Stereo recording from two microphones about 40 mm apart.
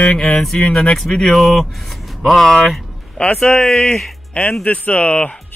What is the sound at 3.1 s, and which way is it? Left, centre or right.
Speech, left.